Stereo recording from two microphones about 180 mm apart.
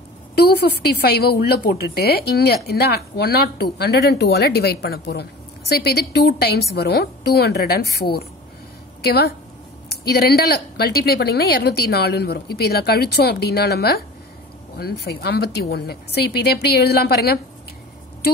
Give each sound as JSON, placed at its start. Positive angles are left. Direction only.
{"t": 0.5, "sound": "a woman's voice", "side_deg": 65}